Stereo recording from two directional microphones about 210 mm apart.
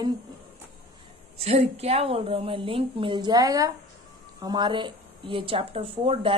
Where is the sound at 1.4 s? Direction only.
30° right (ahead or behind).